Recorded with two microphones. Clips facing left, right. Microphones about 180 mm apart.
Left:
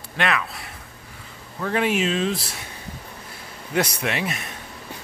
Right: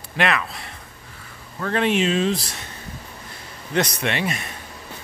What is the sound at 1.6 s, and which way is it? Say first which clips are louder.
Speech: right 1 dB; 10° left (ahead or behind).